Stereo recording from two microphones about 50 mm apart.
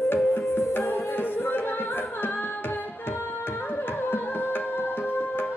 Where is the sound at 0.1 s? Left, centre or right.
Left.